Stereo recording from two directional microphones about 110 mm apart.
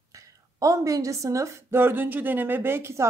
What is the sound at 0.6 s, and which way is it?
A woman's voice, 30° right (ahead or behind).